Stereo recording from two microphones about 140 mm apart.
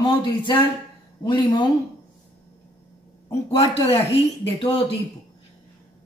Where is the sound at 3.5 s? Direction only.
45° left (ahead or behind).